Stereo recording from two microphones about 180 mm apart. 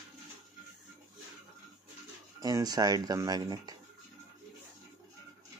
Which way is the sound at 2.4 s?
20° right (ahead or behind).